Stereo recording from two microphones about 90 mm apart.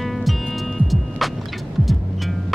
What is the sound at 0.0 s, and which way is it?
Music, centre (ahead or behind).